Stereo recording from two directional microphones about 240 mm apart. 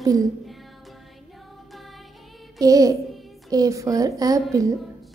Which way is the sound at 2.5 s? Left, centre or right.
Centre.